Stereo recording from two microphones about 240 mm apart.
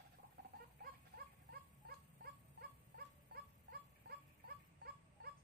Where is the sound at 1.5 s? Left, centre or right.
Right.